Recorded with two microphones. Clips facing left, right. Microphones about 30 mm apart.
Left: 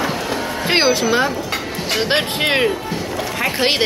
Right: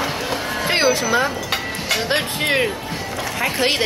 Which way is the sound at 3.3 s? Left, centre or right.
Centre.